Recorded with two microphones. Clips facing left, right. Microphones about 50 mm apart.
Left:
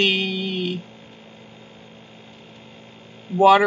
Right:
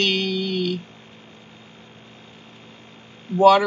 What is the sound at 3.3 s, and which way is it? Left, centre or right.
Speech, centre.